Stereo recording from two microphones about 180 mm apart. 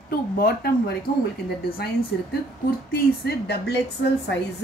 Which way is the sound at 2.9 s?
60° left (ahead or behind).